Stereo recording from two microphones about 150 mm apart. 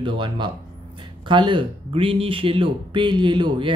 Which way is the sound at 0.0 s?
35° right (ahead or behind).